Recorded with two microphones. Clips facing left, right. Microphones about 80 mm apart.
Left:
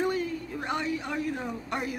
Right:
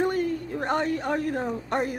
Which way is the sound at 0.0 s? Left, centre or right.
Right.